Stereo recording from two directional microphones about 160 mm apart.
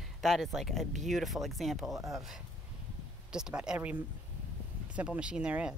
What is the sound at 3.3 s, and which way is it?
Speech, 5° right (ahead or behind).